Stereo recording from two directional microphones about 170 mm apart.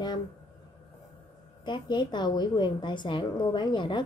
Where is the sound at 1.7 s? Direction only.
25° left (ahead or behind).